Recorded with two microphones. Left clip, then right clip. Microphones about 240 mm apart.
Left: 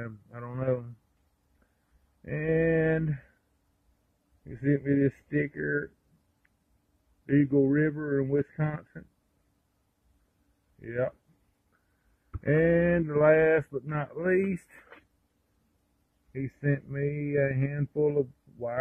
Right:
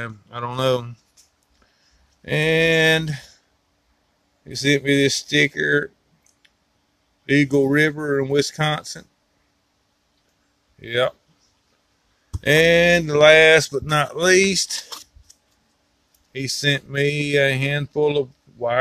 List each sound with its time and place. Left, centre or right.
0.0 s speech: right
2.2 s speech: right
4.5 s speech: right
7.2 s speech: right
10.8 s speech: right
12.4 s speech: right
16.3 s speech: right